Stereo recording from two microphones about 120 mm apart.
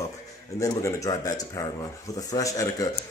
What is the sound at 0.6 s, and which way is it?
Speech, 25° left (ahead or behind).